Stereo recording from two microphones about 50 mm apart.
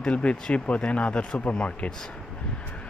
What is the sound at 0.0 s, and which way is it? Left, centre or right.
Speech, left.